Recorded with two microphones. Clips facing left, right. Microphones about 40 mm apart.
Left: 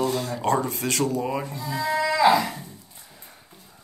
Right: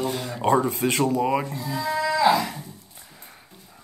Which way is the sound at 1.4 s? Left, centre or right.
Centre.